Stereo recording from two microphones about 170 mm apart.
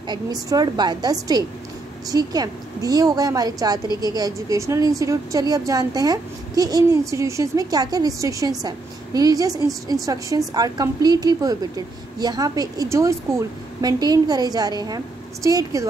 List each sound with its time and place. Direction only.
0.1 s a woman's voice: 20° right (ahead or behind)